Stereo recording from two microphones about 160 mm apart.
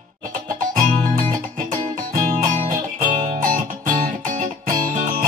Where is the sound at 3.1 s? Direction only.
55° right (ahead or behind).